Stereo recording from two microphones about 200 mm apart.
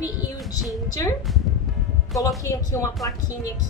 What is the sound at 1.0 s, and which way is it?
Speech, 15° left (ahead or behind).